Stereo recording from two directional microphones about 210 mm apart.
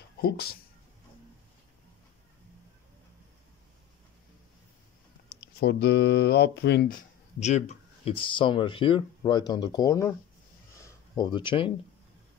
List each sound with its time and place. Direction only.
0.2 s speech: 45° left (ahead or behind)
5.3 s speech: 50° left (ahead or behind)
7.4 s speech: 30° left (ahead or behind); by 10.1 s 15° left (ahead or behind)
10.8 s a sound: 20° left (ahead or behind)